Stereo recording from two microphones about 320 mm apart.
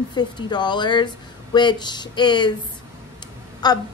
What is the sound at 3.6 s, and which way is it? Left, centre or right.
Speech, centre.